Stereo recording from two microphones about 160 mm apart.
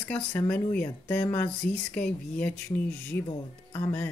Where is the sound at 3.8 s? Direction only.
10° left (ahead or behind).